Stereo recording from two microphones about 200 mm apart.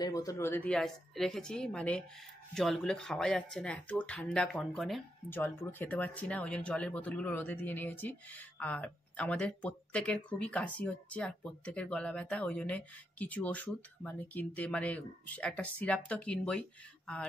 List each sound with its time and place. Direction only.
0.0 s a woman's voice: 15° left (ahead or behind)